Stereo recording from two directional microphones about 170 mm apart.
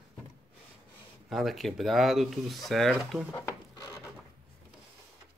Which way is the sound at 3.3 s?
20° left (ahead or behind).